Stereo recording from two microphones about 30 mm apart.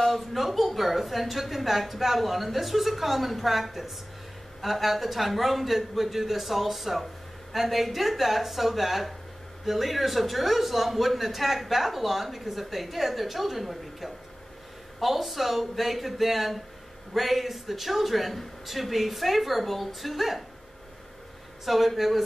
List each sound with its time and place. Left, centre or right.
0.0 s a woman's voice: centre
21.6 s a woman's voice: centre